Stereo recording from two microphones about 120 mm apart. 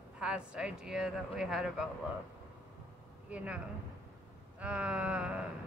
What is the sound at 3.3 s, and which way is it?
Speech, 10° right (ahead or behind).